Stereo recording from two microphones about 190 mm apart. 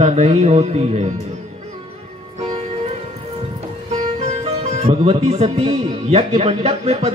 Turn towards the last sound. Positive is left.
turn(degrees=-35)  # may be behind; listen again after turning